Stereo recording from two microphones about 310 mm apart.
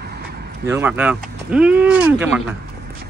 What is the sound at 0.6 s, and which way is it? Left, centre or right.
Speech, centre.